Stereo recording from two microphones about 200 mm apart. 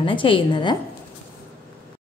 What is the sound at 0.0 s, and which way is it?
Speech, 25° left (ahead or behind).